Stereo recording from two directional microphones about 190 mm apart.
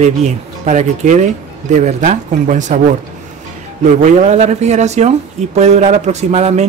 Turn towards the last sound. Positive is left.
turn(degrees=-35)  # may be behind; listen again after turning